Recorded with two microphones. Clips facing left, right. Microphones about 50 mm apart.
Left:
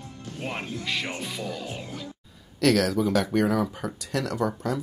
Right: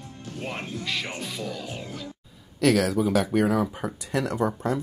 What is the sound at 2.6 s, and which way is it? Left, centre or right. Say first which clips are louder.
Speech: even; centre.